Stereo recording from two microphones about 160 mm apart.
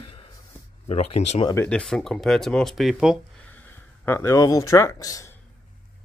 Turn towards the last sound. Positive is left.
turn(degrees=20)  # may be behind; listen again after turning